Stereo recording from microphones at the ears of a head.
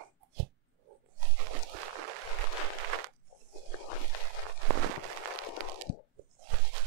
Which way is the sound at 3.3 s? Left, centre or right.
Left.